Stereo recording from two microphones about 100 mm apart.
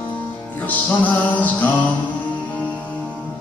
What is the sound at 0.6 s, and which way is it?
Music, 15° left (ahead or behind).